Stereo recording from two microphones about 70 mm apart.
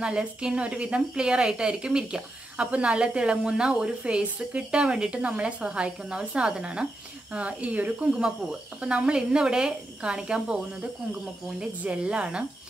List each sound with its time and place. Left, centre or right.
0.0 s a woman's voice: centre